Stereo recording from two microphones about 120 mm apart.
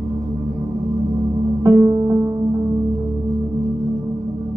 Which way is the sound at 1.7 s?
25° right (ahead or behind).